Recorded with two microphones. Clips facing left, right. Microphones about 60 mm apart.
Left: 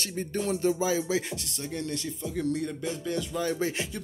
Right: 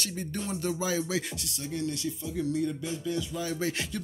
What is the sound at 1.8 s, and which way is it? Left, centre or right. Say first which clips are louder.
Speech: right 1 dB; left.